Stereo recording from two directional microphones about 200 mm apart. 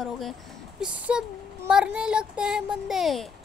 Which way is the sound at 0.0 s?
Centre (ahead or behind).